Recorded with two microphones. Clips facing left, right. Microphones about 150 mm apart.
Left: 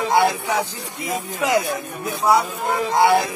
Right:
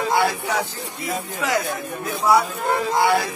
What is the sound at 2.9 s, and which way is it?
Speech, 20° left (ahead or behind).